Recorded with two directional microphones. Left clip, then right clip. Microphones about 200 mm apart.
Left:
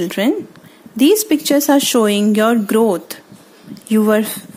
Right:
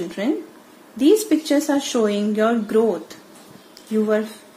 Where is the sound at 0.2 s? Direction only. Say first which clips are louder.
Left 5 dB; 45° left (ahead or behind).